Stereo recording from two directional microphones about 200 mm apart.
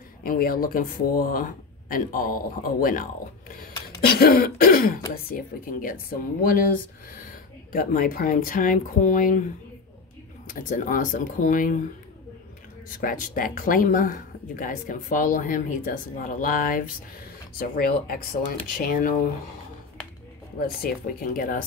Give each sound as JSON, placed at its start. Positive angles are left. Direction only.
{"t": 0.2, "sound": "speech", "side_deg": 45}
{"t": 10.4, "sound": "speech", "side_deg": 40}
{"t": 12.9, "sound": "speech", "side_deg": 45}
{"t": 20.5, "sound": "speech", "side_deg": 50}